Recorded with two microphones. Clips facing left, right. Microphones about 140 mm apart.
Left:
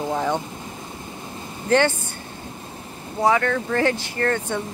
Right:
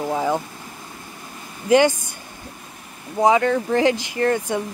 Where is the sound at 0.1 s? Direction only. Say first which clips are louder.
Right 2 dB; 5° right (ahead or behind).